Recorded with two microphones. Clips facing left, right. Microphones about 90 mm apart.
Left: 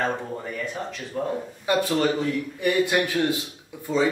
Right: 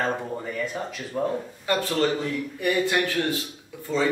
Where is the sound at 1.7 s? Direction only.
15° left (ahead or behind).